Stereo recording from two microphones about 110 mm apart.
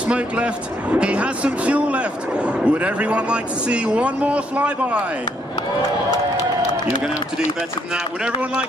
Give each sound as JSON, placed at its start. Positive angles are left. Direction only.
{"t": 0.0, "sound": "speech", "side_deg": -10}
{"t": 5.8, "sound": "speech", "side_deg": 35}
{"t": 7.9, "sound": "speech", "side_deg": -10}